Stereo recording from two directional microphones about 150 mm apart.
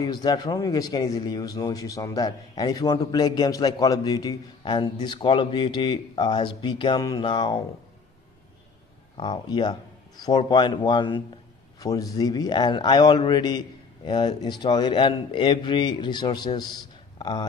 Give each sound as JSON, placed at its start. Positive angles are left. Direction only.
{"t": 0.0, "sound": "speech", "side_deg": 25}
{"t": 9.1, "sound": "speech", "side_deg": 30}